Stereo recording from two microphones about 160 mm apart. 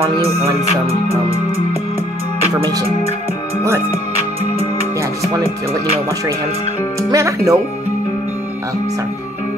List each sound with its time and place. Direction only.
7.1 s speech: 20° right (ahead or behind)